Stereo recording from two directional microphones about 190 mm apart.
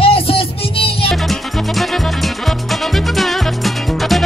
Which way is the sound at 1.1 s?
Centre (ahead or behind).